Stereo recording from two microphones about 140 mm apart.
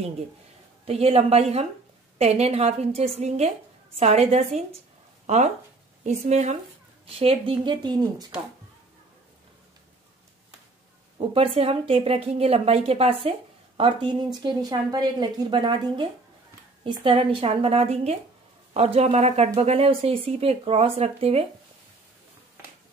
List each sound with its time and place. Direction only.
0.8 s speech: 45° right (ahead or behind)
7.2 s speech: 40° right (ahead or behind)
11.1 s speech: 40° right (ahead or behind)